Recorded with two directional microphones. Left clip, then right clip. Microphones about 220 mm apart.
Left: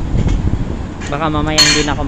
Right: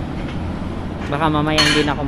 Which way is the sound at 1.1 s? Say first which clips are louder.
Left 1 dB; centre (ahead or behind).